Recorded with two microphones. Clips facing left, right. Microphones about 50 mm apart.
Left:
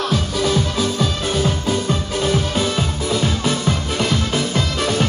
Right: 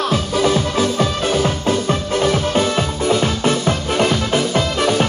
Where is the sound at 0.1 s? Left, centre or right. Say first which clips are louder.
Right 4 dB; right.